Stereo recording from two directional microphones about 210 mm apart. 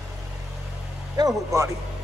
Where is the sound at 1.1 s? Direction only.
15° right (ahead or behind).